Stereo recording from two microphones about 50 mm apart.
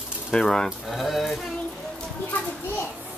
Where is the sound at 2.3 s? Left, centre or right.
Left.